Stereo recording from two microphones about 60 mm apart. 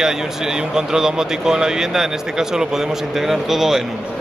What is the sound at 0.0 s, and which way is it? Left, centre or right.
Speech, centre.